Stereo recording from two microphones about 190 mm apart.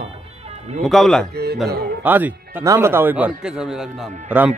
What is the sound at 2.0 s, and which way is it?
Speech, 10° right (ahead or behind).